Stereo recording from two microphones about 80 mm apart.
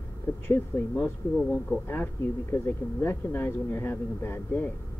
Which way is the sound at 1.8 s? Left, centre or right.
Left.